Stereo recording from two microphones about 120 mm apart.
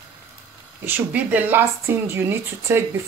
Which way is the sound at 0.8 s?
15° right (ahead or behind).